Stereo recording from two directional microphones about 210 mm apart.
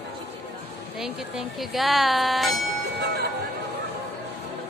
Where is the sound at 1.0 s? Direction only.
Centre (ahead or behind).